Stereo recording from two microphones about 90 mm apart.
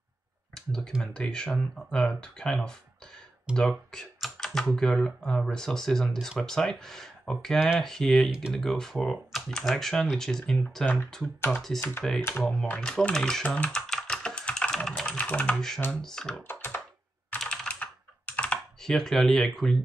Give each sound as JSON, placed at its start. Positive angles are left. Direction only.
{"t": 0.6, "sound": "speech", "side_deg": 5}
{"t": 3.5, "sound": "computer keyboard", "side_deg": 5}
{"t": 4.6, "sound": "speech", "side_deg": 5}
{"t": 7.5, "sound": "speech", "side_deg": -10}
{"t": 7.8, "sound": "speech", "side_deg": 5}
{"t": 12.2, "sound": "speech", "side_deg": 25}
{"t": 12.4, "sound": "speech", "side_deg": 15}
{"t": 16.4, "sound": "computer keyboard", "side_deg": 25}
{"t": 17.4, "sound": "computer keyboard", "side_deg": 10}